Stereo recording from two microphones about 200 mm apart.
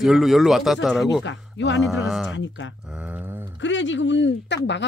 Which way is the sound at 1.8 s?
Centre (ahead or behind).